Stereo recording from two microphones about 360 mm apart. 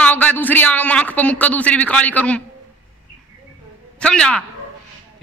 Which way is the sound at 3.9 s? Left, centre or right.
Centre.